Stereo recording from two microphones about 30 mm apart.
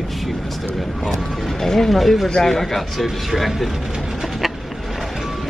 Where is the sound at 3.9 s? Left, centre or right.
Centre.